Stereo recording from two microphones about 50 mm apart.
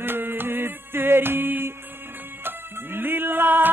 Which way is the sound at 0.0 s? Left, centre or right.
Right.